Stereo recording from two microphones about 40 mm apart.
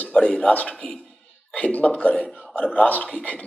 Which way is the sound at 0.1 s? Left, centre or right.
Left.